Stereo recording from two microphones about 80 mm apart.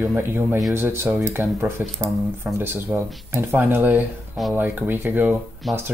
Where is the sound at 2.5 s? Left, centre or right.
Right.